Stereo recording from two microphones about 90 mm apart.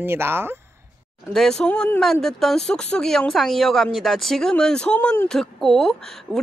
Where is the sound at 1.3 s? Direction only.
5° left (ahead or behind).